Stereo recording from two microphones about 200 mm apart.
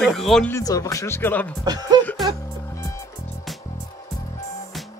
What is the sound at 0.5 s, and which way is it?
Speech, 15° left (ahead or behind).